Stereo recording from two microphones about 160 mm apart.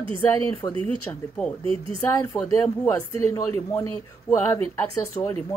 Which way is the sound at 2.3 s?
5° left (ahead or behind).